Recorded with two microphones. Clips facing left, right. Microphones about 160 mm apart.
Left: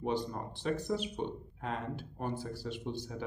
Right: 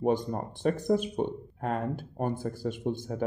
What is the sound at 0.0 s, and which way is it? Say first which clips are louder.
Speech: right 7 dB; 50° right (ahead or behind).